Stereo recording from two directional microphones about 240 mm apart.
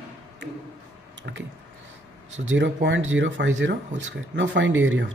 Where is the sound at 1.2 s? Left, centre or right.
Right.